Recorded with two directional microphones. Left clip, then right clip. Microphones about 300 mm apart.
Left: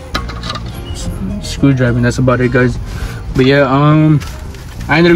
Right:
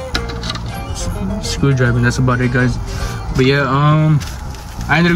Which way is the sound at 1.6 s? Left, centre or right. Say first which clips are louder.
Left 6 dB; centre.